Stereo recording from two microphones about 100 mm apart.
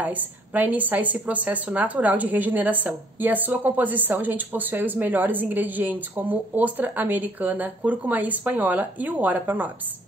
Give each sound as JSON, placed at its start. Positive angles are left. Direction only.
{"t": 0.0, "sound": "a woman's voice", "side_deg": -15}